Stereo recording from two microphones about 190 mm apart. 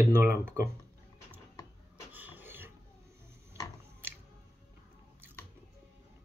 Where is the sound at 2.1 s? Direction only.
10° right (ahead or behind).